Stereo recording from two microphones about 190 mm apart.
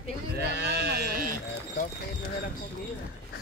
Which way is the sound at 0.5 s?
60° right (ahead or behind).